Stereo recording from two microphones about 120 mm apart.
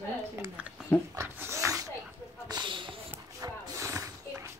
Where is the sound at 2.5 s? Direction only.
40° right (ahead or behind).